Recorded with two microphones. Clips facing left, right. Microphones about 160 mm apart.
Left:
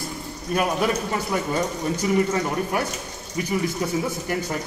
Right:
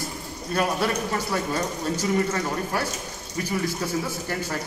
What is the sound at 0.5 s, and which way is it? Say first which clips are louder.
Speech: left 2 dB; 10° left (ahead or behind).